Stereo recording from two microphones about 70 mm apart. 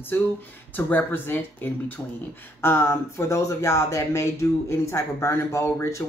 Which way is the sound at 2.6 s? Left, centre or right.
Left.